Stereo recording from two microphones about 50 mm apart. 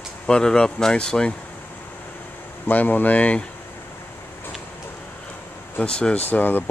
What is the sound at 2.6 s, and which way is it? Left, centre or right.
Speech, left.